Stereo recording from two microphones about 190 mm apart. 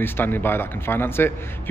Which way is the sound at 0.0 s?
10° left (ahead or behind).